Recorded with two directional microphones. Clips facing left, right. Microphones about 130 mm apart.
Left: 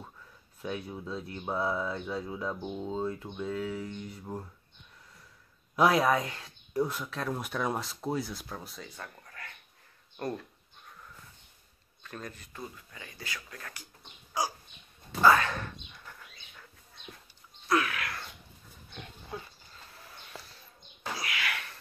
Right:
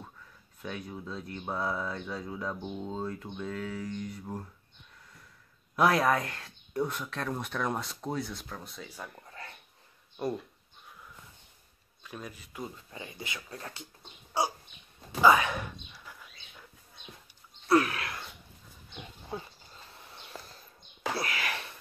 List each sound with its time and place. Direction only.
0.6 s speech: 5° left (ahead or behind)
5.8 s speech: centre (ahead or behind)
9.2 s dog: 25° right (ahead or behind)
10.1 s speech: 5° right (ahead or behind)
12.0 s speech: 10° right (ahead or behind)
12.6 s speech: 25° right (ahead or behind)
15.2 s whispering: 15° right (ahead or behind)
17.6 s a sound: 30° right (ahead or behind)
19.3 s a sound: 25° right (ahead or behind)
21.2 s sneeze: 40° right (ahead or behind)